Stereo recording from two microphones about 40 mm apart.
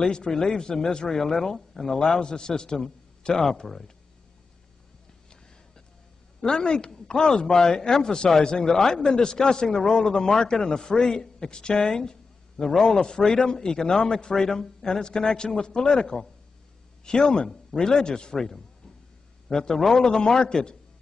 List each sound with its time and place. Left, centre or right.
0.0 s a man's voice: centre
6.4 s a man's voice: left